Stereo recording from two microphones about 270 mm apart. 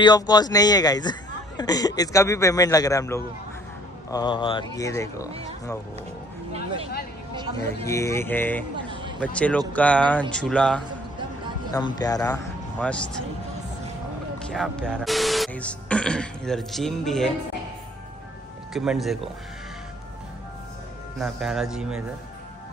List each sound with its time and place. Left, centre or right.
0.0 s a man's voice: centre
6.5 s speech: right
7.6 s a man's voice: centre
8.7 s a sound: centre
9.2 s speech: centre
11.7 s speech: centre
14.5 s speech: centre
18.7 s speech: centre
21.2 s speech: centre